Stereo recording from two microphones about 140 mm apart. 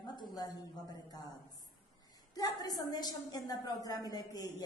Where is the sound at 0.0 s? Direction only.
30° left (ahead or behind).